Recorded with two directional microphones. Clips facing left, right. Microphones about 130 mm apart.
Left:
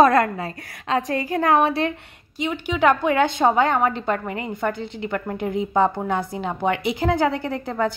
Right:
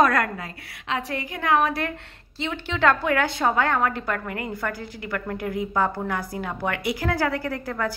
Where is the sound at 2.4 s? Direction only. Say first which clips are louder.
Left 3 dB; 15° left (ahead or behind).